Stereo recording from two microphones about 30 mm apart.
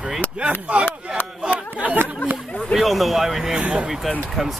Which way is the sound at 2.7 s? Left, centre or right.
Centre.